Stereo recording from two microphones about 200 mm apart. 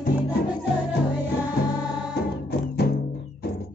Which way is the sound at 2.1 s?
50° left (ahead or behind).